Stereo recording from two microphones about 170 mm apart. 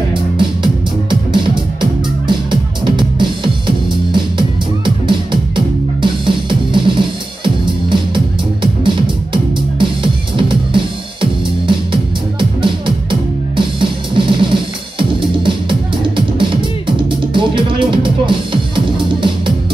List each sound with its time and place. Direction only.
0.1 s music: 30° right (ahead or behind)